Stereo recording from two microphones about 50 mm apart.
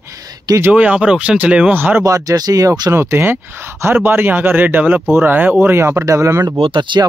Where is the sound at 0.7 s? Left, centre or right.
Right.